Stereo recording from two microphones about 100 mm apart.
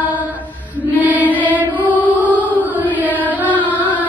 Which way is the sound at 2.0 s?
15° right (ahead or behind).